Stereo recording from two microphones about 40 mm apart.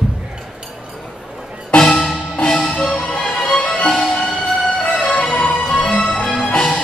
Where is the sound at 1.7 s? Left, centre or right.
Left.